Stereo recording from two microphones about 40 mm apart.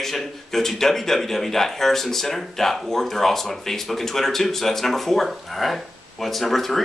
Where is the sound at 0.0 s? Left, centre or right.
Centre.